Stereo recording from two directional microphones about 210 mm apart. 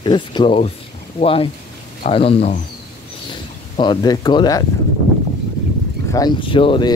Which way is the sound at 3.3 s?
20° left (ahead or behind).